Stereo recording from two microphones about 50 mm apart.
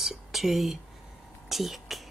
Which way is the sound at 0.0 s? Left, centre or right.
Centre.